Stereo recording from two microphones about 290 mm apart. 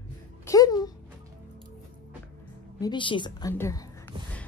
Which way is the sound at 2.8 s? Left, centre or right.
Centre.